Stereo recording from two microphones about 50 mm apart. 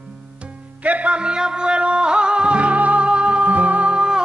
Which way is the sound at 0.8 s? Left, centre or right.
Right.